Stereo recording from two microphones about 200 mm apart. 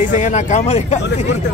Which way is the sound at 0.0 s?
35° left (ahead or behind).